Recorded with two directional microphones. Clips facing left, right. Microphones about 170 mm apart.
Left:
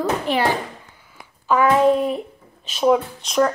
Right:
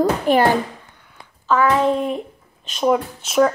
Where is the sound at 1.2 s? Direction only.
15° left (ahead or behind).